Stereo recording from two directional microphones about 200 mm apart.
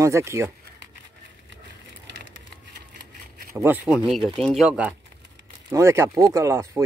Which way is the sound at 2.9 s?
55° right (ahead or behind).